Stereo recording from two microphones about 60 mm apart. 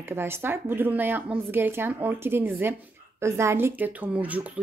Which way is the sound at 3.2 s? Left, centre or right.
Right.